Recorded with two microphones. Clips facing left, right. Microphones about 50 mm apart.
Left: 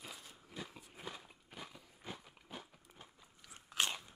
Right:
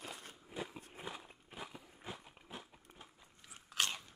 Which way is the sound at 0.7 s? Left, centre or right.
Centre.